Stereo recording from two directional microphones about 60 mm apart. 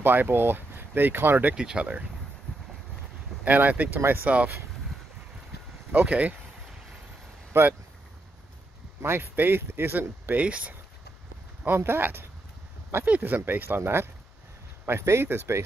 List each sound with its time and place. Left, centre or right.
0.0 s speech: right
1.5 s speech: centre
3.4 s speech: right
4.0 s speech: right
5.9 s speech: right
7.5 s speech: right
9.0 s speech: right
11.6 s speech: right
13.0 s speech: right